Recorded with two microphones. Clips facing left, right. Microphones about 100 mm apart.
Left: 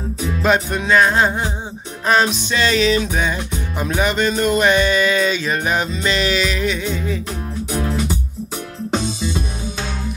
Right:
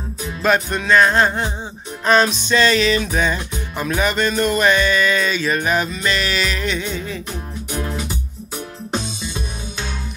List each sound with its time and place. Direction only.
0.4 s music: 15° left (ahead or behind)